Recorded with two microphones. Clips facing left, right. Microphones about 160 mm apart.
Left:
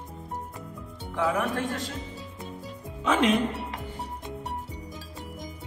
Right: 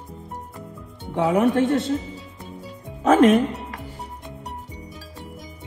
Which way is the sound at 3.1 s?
45° right (ahead or behind).